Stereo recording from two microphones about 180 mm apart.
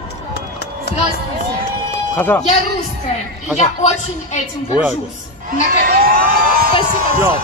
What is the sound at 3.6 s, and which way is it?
Speech, 40° left (ahead or behind).